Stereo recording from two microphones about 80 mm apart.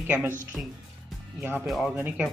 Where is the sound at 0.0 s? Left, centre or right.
Right.